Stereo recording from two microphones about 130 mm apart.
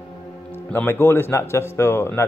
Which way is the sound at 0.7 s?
15° left (ahead or behind).